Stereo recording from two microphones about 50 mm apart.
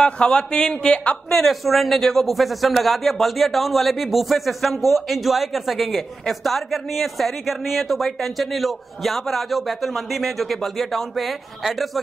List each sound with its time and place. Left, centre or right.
0.0 s a man's voice: centre
1.4 s speech: centre